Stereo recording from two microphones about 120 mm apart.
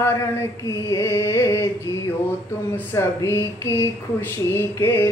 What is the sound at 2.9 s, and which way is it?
Speech, 20° left (ahead or behind).